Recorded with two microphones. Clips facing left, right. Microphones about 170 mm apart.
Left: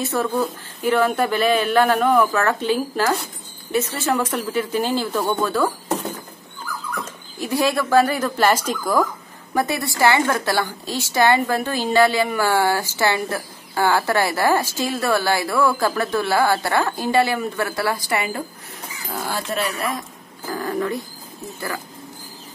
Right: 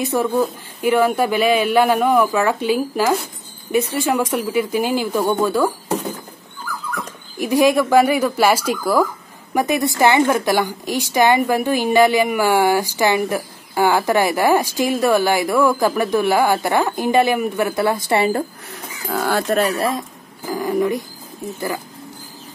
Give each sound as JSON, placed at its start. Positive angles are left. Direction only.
{"t": 0.0, "sound": "a woman's voice", "side_deg": -15}
{"t": 7.3, "sound": "a woman's voice", "side_deg": -15}
{"t": 19.5, "sound": "speech", "side_deg": -50}
{"t": 20.4, "sound": "a woman's voice", "side_deg": -10}